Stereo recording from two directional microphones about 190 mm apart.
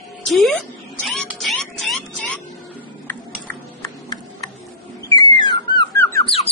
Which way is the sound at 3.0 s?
15° left (ahead or behind).